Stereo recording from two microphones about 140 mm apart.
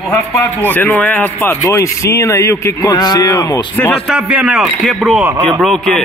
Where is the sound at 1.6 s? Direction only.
25° left (ahead or behind).